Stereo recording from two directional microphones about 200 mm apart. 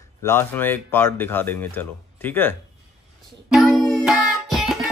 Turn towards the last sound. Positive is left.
turn(degrees=0)  # may be behind; listen again after turning